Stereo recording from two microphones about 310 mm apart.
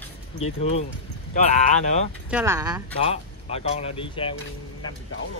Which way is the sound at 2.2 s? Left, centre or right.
Centre.